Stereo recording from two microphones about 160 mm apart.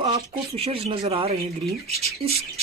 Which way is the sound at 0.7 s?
35° right (ahead or behind).